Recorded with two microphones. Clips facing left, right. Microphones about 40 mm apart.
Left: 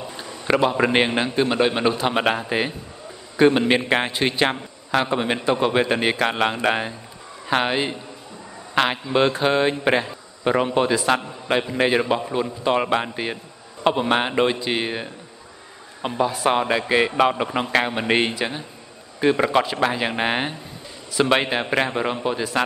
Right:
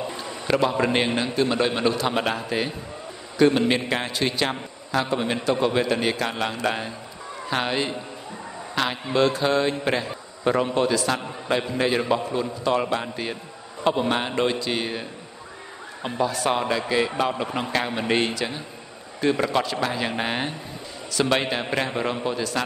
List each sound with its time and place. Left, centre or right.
0.2 s a man's voice: left
8.7 s a man's voice: left